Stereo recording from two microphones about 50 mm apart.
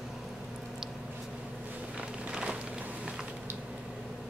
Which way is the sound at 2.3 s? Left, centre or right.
Right.